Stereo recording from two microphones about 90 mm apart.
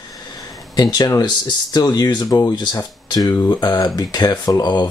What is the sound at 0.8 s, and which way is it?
Speech, 50° left (ahead or behind).